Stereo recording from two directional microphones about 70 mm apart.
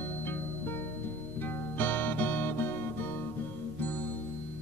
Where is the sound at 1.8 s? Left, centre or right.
Left.